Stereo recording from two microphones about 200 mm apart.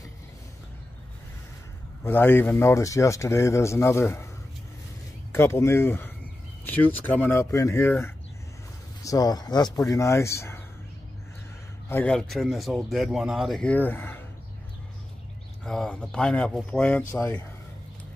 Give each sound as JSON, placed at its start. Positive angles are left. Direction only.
{"t": 2.0, "sound": "speech", "side_deg": 10}
{"t": 5.3, "sound": "speech", "side_deg": 15}
{"t": 11.9, "sound": "speech", "side_deg": 5}
{"t": 15.6, "sound": "speech", "side_deg": 0}